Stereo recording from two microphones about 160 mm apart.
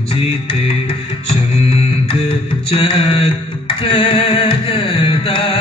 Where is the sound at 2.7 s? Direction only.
35° left (ahead or behind).